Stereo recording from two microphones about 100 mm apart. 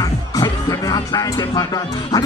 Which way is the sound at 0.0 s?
35° left (ahead or behind).